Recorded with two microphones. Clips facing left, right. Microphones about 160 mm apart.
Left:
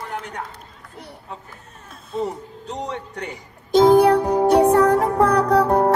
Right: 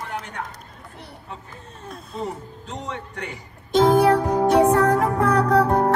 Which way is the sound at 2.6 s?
35° left (ahead or behind).